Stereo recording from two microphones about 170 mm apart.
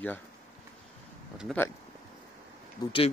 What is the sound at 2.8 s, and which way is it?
Speech, 20° left (ahead or behind).